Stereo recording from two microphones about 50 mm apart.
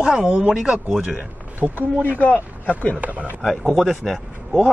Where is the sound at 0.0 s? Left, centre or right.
Centre.